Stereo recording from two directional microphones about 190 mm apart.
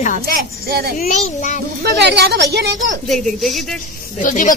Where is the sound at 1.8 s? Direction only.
65° right (ahead or behind).